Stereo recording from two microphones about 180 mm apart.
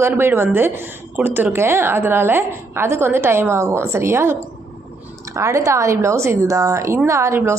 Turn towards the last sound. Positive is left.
turn(degrees=-15)  # may be behind; listen again after turning